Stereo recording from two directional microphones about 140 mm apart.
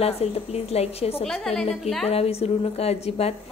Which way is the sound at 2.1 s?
45° left (ahead or behind).